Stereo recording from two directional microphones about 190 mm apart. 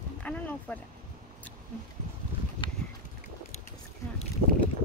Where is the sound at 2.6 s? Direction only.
25° left (ahead or behind).